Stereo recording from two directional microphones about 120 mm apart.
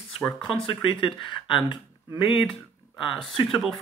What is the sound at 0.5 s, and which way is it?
Speech, 45° left (ahead or behind).